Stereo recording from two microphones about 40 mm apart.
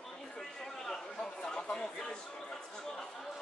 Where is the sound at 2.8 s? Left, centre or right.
Centre.